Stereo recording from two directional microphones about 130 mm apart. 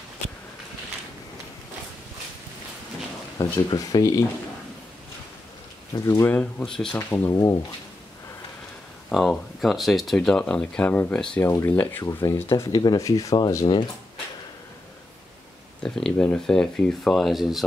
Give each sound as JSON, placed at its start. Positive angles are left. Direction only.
{"t": 3.3, "sound": "speech", "side_deg": 25}
{"t": 5.9, "sound": "speech", "side_deg": 20}
{"t": 6.6, "sound": "speech", "side_deg": 5}
{"t": 7.0, "sound": "speech", "side_deg": 20}
{"t": 9.1, "sound": "speech", "side_deg": 0}
{"t": 15.8, "sound": "speech", "side_deg": 10}